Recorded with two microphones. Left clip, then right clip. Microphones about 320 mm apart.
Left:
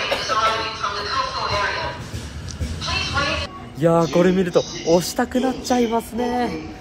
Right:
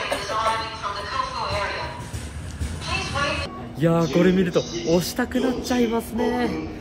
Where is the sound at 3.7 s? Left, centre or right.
Centre.